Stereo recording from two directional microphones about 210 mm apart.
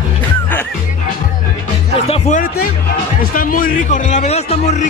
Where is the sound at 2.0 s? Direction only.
30° left (ahead or behind).